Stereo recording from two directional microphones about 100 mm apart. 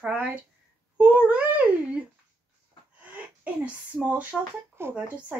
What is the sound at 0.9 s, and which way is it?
Babbling, 15° right (ahead or behind).